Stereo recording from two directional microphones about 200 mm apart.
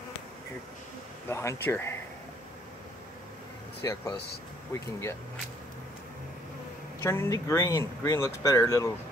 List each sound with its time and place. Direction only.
1.3 s speech: 15° left (ahead or behind)
3.8 s speech: 15° left (ahead or behind)
7.0 s speech: 15° left (ahead or behind)